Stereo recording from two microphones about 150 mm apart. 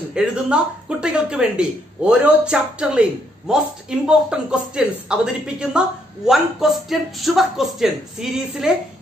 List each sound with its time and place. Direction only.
0.1 s speech: 5° right (ahead or behind)